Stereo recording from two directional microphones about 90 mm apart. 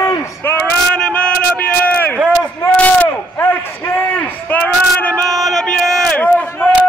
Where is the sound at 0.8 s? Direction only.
10° left (ahead or behind).